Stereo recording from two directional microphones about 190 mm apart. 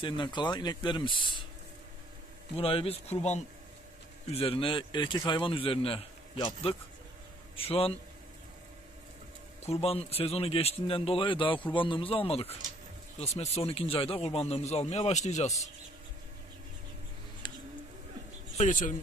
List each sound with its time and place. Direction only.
0.0 s a man's voice: 25° left (ahead or behind)
2.5 s a man's voice: 30° left (ahead or behind)
7.5 s speech: 30° left (ahead or behind)
9.7 s a man's voice: 30° left (ahead or behind)
18.6 s speech: 40° left (ahead or behind)